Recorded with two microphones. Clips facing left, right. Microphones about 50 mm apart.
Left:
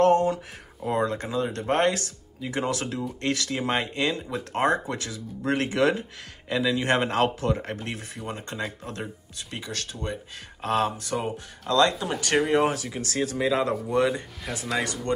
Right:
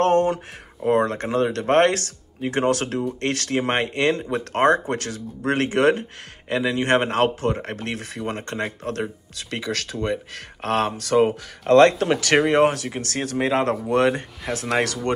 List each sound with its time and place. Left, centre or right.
0.0 s a sound: right
0.8 s speech: right
7.7 s speech: right
9.4 s speech: right
11.0 s speech: right
12.4 s speech: right
14.9 s speech: right